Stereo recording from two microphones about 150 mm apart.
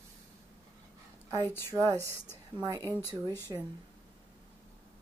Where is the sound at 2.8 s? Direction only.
15° left (ahead or behind).